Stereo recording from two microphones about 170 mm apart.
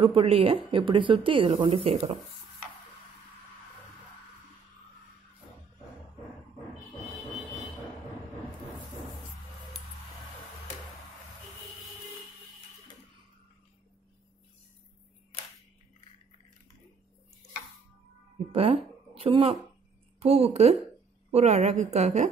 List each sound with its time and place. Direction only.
0.0 s a woman's voice: 35° right (ahead or behind)
18.5 s a woman's voice: 35° right (ahead or behind)